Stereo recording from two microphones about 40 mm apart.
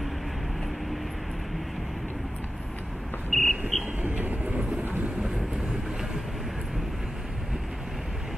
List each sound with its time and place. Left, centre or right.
3.3 s a sound: centre
3.7 s train: centre
4.2 s train: right